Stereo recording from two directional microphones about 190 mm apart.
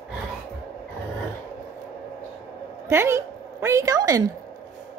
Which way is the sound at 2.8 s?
15° right (ahead or behind).